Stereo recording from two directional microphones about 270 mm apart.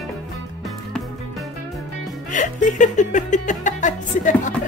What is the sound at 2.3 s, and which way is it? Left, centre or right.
Music, left.